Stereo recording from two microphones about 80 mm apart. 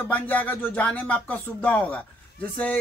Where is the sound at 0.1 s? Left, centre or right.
Left.